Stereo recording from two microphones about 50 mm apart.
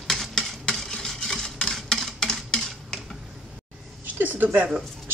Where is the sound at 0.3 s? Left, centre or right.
Centre.